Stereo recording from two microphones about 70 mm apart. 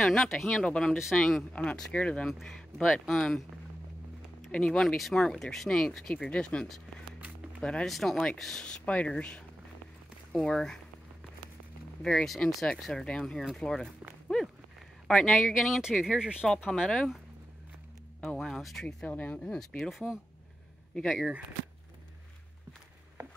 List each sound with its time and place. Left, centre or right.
0.0 s speech: centre
4.5 s speech: centre
7.9 s speech: centre
12.0 s speech: centre
15.0 s speech: centre
15.3 s speech: centre
16.6 s speech: centre
18.5 s speech: centre
19.0 s speech: left; by 21.3 s centre